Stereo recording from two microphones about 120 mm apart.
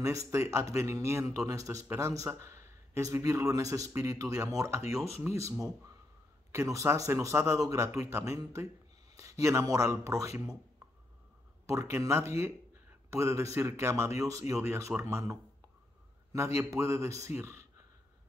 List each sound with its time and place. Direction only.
0.3 s speech: 25° right (ahead or behind)
11.6 s speech: 25° right (ahead or behind)
16.3 s speech: 25° right (ahead or behind)